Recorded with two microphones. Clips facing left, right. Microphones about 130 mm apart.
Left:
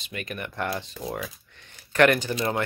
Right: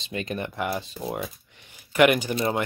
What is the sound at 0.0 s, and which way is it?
Speech, 25° right (ahead or behind).